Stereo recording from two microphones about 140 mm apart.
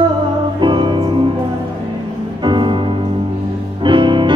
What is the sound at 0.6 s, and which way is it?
Music, 35° right (ahead or behind).